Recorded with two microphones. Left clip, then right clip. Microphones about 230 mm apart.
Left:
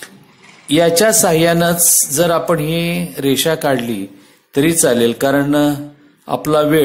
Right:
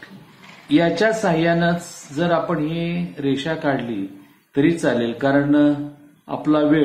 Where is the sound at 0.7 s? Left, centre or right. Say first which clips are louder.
Left 6 dB; left.